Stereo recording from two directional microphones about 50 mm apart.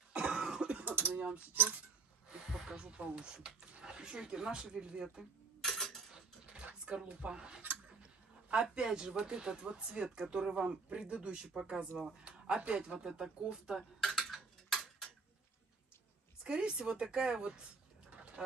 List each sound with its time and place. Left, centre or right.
0.1 s cough: right
0.5 s throat clearing: centre
0.8 s mechanisms: right
1.5 s speech: right
2.5 s speech: centre
5.6 s cutlery: centre
6.1 s dishes: centre
8.6 s speech: centre
14.0 s tick-tock: centre
16.4 s speech: centre